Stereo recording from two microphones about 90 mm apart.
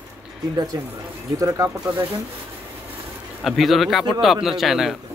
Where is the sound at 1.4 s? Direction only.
35° right (ahead or behind).